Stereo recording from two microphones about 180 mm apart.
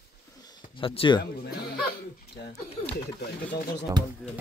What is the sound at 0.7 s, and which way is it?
Speech, 30° left (ahead or behind).